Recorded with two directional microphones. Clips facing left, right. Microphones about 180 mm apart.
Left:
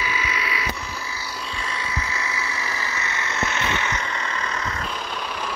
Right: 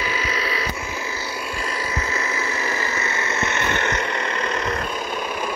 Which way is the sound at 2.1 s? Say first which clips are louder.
Right 4 dB; 45° right (ahead or behind).